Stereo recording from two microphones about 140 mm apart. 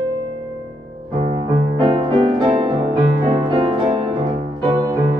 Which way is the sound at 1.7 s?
35° right (ahead or behind).